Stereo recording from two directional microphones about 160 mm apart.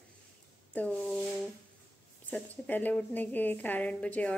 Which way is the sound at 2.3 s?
10° left (ahead or behind).